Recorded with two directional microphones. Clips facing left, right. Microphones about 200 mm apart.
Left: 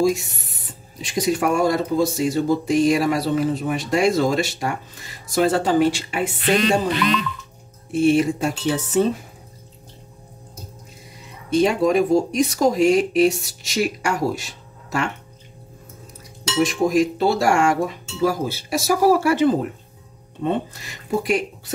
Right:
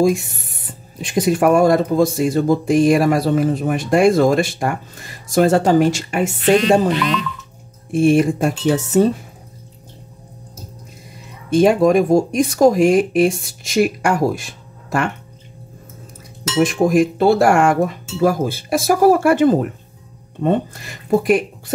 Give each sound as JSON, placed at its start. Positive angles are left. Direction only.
{"t": 0.0, "sound": "speech", "side_deg": -55}
{"t": 7.9, "sound": "speech", "side_deg": -50}
{"t": 11.5, "sound": "speech", "side_deg": -50}
{"t": 16.5, "sound": "speech", "side_deg": -55}